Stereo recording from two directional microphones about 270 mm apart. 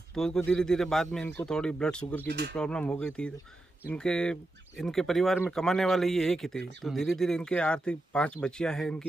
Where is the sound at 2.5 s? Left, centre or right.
Centre.